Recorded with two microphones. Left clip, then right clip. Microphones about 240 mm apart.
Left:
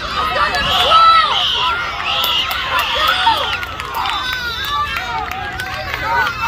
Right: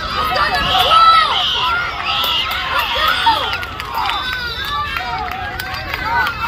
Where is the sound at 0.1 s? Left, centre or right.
Centre.